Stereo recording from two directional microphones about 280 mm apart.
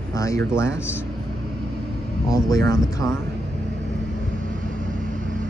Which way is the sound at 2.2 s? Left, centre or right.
Centre.